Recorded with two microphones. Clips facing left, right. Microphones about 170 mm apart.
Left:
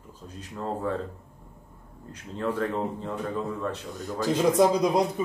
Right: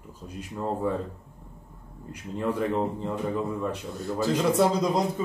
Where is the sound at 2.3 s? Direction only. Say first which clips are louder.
Right 1 dB; 10° right (ahead or behind).